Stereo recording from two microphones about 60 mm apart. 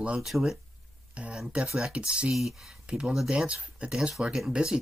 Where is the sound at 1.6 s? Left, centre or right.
Centre.